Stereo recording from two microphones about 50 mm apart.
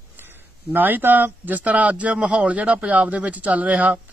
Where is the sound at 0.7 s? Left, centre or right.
Right.